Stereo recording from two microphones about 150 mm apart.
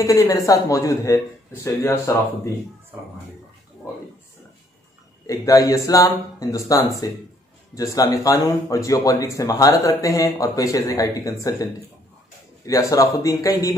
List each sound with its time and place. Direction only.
0.0 s speech: 20° left (ahead or behind)
5.2 s speech: 20° left (ahead or behind)
12.6 s speech: 20° left (ahead or behind)